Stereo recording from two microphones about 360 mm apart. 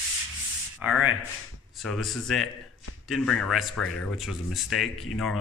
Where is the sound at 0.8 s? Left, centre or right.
Centre.